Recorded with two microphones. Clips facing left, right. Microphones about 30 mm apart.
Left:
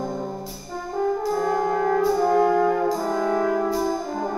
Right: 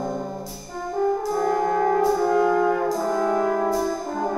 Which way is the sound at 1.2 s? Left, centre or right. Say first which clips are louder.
Even; centre.